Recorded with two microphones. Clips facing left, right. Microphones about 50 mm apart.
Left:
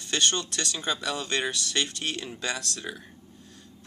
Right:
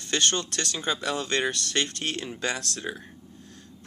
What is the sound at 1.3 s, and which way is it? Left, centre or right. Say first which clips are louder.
Speech: right 2 dB; right.